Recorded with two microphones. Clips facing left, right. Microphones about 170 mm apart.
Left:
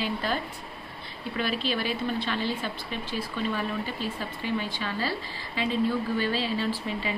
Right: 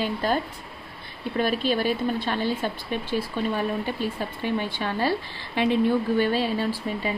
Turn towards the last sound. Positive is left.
turn(degrees=-50)  # may be behind; listen again after turning